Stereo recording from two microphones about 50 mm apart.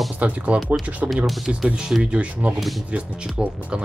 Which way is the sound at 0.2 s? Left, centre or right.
Right.